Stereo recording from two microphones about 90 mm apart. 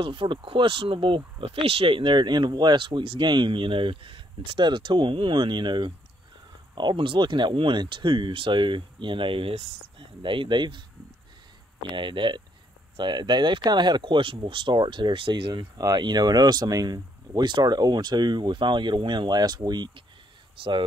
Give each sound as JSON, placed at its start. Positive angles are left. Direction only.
{"t": 0.0, "sound": "speech", "side_deg": -75}
{"t": 11.9, "sound": "speech", "side_deg": -65}
{"t": 15.8, "sound": "speech", "side_deg": -50}
{"t": 20.6, "sound": "speech", "side_deg": -75}